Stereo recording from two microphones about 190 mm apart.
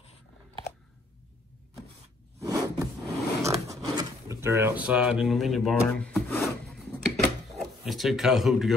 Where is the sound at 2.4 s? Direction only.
15° right (ahead or behind).